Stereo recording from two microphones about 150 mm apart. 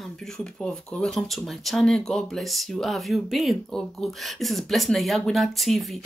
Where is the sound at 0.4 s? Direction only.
5° left (ahead or behind).